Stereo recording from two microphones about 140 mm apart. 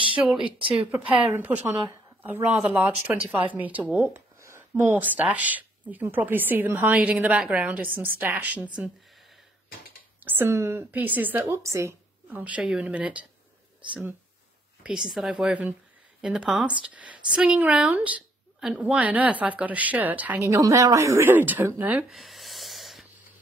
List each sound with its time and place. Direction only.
0.1 s speech: 5° right (ahead or behind)
0.4 s speech: 40° right (ahead or behind)
0.7 s speech: 10° right (ahead or behind)
10.2 s speech: 15° right (ahead or behind)
14.8 s speech: 5° right (ahead or behind)
20.4 s a woman's voice: 25° right (ahead or behind)
22.1 s rub: centre (ahead or behind)